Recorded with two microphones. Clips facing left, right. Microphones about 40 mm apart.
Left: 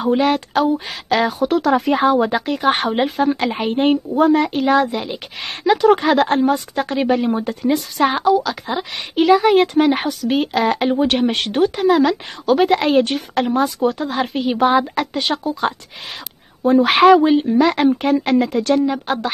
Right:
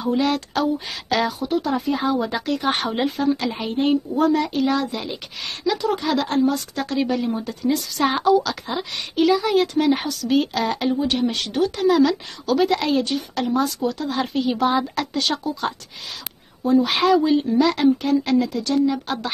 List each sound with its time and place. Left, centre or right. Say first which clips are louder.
0.0 s speech: left 5 dB; left
0.3 s a woman's voice: left 5 dB; left
1.4 s speech: left 6 dB; left
2.0 s a woman's voice: left 6 dB; left
4.1 s a woman's voice: left 5 dB; left
5.8 s speech: left 11 dB; left
7.2 s speech: left 4 dB; left
8.0 s a woman's voice: left 2 dB; centre
9.1 s a woman's voice: left 5 dB; left
11.0 s speech: left 5 dB; left
11.7 s a woman's voice: even; left
16.6 s speech: left 7 dB; left
17.4 s speech: left 3 dB; left
18.9 s a woman's voice: left 3 dB; left